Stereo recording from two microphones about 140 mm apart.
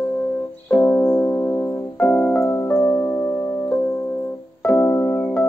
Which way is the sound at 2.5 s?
15° left (ahead or behind).